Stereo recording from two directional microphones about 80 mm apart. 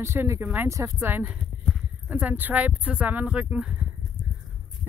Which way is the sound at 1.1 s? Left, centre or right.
Right.